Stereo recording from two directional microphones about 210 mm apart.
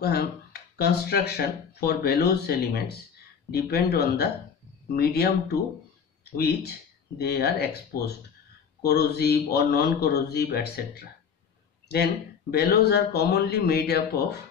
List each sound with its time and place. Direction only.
0.0 s speech: 50° left (ahead or behind)
8.8 s speech: 50° left (ahead or behind)